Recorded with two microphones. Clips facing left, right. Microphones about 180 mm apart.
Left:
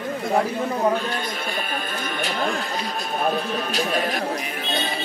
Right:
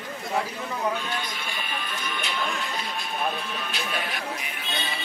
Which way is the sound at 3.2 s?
40° left (ahead or behind).